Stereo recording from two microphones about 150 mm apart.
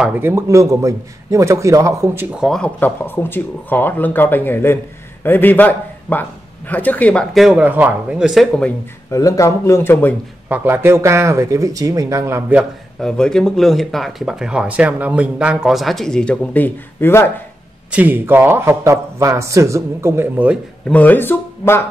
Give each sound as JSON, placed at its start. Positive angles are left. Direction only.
{"t": 0.0, "sound": "a man's voice", "side_deg": -15}
{"t": 2.3, "sound": "a man's voice", "side_deg": 0}
{"t": 9.1, "sound": "speech", "side_deg": 20}
{"t": 10.5, "sound": "a man's voice", "side_deg": -15}
{"t": 13.0, "sound": "speech", "side_deg": 5}
{"t": 17.9, "sound": "a man's voice", "side_deg": -15}
{"t": 20.9, "sound": "speech", "side_deg": 10}